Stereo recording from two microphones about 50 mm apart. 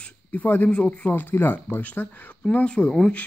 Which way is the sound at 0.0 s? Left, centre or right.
Left.